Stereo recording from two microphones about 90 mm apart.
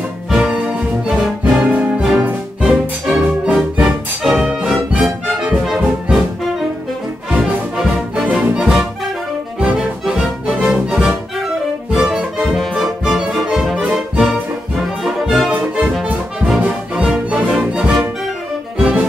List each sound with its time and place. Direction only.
0.3 s music: 10° right (ahead or behind)
7.2 s music: 15° right (ahead or behind)